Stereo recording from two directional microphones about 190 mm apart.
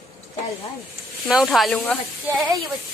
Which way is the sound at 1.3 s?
Centre (ahead or behind).